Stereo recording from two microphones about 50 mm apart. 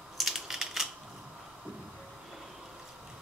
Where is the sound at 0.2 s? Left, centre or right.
Centre.